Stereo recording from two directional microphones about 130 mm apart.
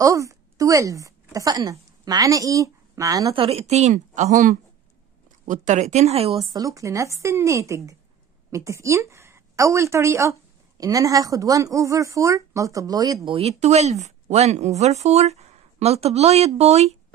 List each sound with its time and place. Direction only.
0.0 s speech: 25° right (ahead or behind)
3.3 s speech: 55° right (ahead or behind)
6.5 s a woman's voice: 25° right (ahead or behind)
13.3 s speech: 50° right (ahead or behind)